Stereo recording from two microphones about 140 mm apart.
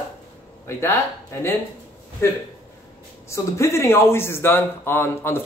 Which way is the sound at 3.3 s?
20° left (ahead or behind).